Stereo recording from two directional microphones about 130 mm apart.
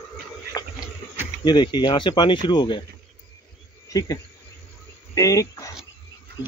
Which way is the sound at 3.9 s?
25° left (ahead or behind).